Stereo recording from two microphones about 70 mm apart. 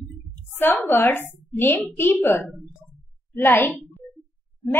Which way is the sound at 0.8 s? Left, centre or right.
Left.